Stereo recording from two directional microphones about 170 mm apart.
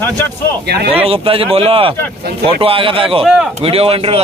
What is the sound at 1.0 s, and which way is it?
Speech, 35° right (ahead or behind).